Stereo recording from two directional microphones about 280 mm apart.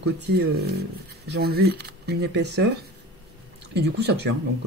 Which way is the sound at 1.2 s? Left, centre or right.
Right.